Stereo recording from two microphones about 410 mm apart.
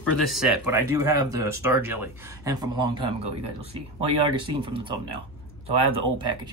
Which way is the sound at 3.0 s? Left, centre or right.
Right.